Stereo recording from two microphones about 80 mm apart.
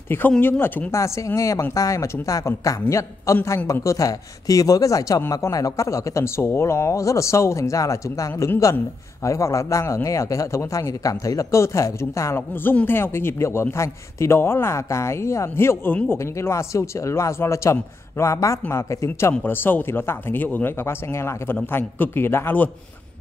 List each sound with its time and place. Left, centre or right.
0.4 s a man's voice: left